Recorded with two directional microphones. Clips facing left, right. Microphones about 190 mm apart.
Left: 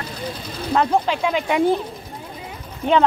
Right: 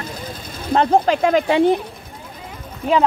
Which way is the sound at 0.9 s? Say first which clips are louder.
Right 5 dB; 50° right (ahead or behind).